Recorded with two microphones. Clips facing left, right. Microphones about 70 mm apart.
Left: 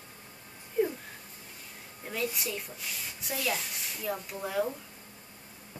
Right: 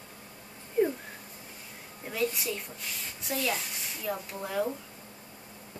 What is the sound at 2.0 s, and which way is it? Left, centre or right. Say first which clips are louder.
A woman's voice: right 3 dB; centre.